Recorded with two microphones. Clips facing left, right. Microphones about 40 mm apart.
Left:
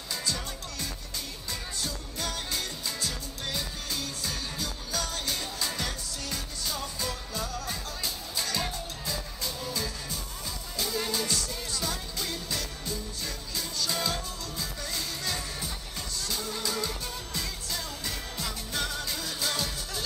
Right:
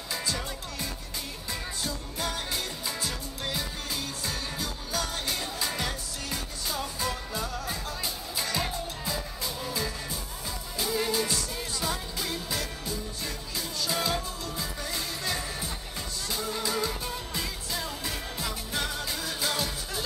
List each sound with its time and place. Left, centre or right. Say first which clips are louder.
0.1 s music: right 1 dB; centre